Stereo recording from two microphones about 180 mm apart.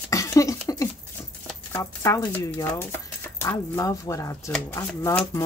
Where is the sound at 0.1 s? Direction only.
20° left (ahead or behind).